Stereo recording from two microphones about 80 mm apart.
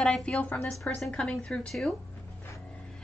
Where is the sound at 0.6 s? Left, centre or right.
Centre.